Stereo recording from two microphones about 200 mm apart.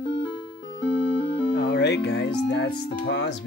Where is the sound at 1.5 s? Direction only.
60° left (ahead or behind).